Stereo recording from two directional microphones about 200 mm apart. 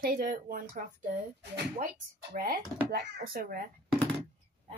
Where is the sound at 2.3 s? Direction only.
45° right (ahead or behind).